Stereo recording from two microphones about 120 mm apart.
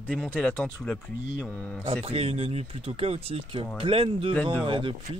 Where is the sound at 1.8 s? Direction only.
55° right (ahead or behind).